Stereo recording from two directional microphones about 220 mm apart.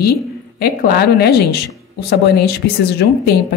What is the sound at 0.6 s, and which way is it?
A woman's voice, 40° left (ahead or behind).